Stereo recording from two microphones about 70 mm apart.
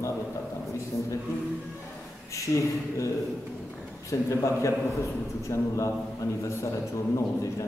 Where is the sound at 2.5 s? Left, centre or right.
Left.